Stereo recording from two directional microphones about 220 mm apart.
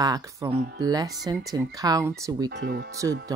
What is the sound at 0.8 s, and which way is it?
Speech, 15° right (ahead or behind).